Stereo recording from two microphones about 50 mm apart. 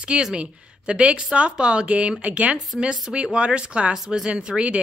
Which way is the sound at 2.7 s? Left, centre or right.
Centre.